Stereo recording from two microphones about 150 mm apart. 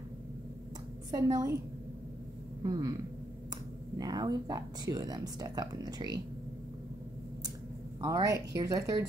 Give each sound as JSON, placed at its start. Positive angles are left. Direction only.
{"t": 1.1, "sound": "speech", "side_deg": -25}
{"t": 2.6, "sound": "speech", "side_deg": -25}
{"t": 4.0, "sound": "speech", "side_deg": -25}
{"t": 8.0, "sound": "speech", "side_deg": -25}